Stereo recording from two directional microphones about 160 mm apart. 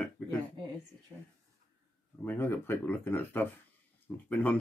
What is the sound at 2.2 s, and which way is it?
Speech, 10° left (ahead or behind).